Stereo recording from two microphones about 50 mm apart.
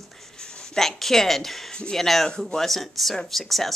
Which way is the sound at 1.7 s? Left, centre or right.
Centre.